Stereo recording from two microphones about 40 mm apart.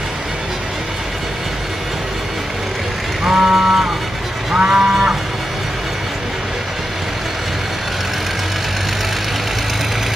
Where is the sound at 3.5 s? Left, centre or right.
Centre.